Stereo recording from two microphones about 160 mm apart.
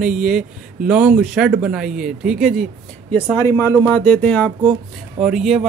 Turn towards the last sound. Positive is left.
turn(degrees=-5)  # may be behind; listen again after turning